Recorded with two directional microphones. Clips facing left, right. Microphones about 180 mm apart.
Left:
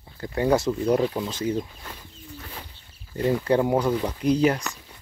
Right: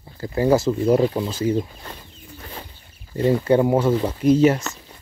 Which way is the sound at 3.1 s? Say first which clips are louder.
Right 4 dB; 25° right (ahead or behind).